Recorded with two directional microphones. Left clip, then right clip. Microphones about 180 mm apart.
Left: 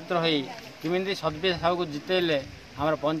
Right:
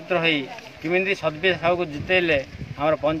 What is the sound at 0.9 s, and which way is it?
Speech, 5° right (ahead or behind).